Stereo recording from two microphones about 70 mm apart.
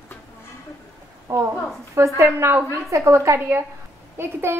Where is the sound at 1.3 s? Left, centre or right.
Right.